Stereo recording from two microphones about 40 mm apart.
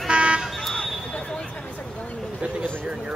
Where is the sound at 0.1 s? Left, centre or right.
Right.